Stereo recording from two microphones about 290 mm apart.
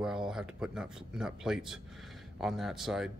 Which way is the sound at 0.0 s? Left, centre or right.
Centre.